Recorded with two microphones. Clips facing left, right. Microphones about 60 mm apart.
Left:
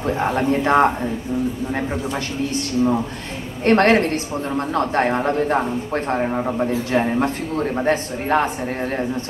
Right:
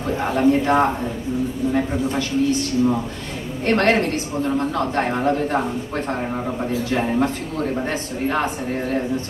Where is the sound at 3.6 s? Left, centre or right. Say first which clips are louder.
Left 3 dB; left.